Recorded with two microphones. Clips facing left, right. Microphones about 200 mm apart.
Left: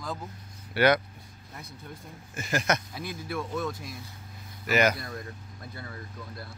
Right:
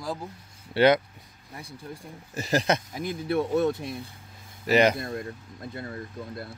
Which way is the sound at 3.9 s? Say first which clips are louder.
Right 7 dB; 60° right (ahead or behind).